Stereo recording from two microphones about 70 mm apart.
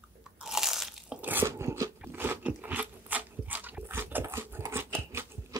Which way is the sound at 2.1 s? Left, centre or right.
Right.